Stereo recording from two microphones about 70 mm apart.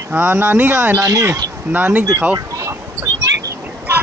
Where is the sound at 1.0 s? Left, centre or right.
Right.